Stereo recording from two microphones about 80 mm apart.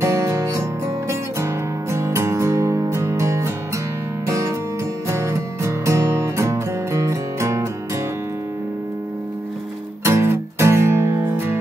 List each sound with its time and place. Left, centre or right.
0.0 s music: right
10.0 s music: right